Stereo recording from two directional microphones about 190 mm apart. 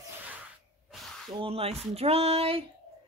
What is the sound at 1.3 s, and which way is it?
Speech, 30° right (ahead or behind).